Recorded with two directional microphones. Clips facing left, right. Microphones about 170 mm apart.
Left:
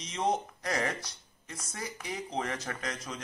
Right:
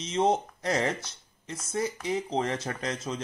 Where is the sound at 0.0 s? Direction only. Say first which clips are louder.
Right 6 dB; 25° right (ahead or behind).